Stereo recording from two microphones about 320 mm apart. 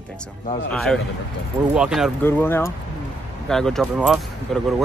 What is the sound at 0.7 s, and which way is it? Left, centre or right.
Speech, centre.